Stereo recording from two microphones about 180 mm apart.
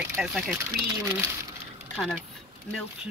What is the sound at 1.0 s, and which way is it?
Speech, 10° right (ahead or behind).